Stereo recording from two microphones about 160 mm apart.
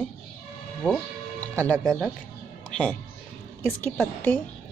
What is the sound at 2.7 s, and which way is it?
A woman's voice, 5° left (ahead or behind).